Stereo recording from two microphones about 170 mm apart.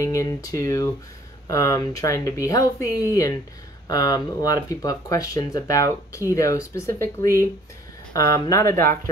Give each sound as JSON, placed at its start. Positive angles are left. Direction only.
{"t": 0.0, "sound": "speech", "side_deg": 15}